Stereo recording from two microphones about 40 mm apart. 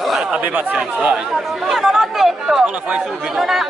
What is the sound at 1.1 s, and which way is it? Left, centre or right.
Speech, centre.